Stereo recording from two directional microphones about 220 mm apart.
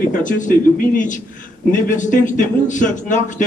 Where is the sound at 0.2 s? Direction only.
35° left (ahead or behind).